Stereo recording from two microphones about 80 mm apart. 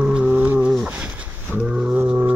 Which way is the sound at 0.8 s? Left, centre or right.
Centre.